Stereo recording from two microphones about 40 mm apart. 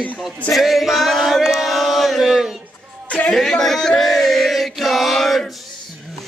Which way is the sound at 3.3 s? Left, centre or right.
Centre.